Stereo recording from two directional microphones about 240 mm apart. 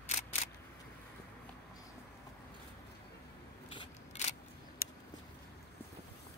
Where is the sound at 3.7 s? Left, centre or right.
Left.